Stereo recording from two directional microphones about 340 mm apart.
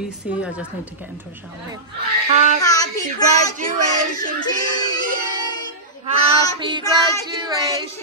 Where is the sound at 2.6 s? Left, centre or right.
Centre.